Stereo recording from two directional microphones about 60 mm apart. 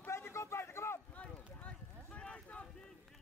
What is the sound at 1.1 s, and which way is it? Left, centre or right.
Run, left.